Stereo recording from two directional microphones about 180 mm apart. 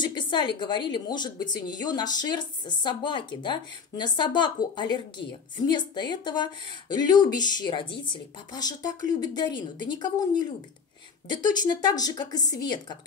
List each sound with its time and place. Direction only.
0.0 s a sound: 25° left (ahead or behind)
0.6 s a woman's voice: 25° left (ahead or behind)
11.6 s a woman's voice: 25° left (ahead or behind)